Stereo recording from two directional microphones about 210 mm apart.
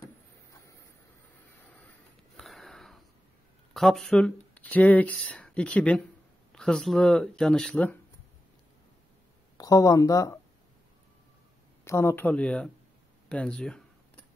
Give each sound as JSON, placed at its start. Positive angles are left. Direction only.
{"t": 2.3, "sound": "sniff", "side_deg": 0}
{"t": 3.7, "sound": "speech", "side_deg": 0}
{"t": 9.6, "sound": "speech", "side_deg": 15}
{"t": 11.8, "sound": "speech", "side_deg": 15}